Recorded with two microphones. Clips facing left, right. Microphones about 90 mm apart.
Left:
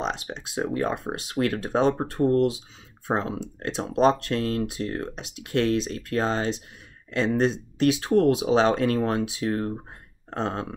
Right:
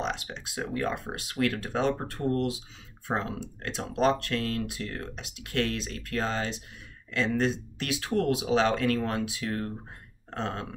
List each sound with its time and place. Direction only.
0.0 s speech: 30° left (ahead or behind)